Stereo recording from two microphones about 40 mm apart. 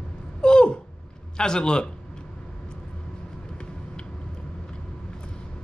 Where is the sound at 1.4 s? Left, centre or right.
Centre.